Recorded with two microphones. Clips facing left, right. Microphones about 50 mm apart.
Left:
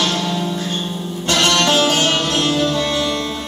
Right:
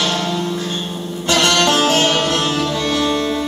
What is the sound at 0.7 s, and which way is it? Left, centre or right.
Music, centre.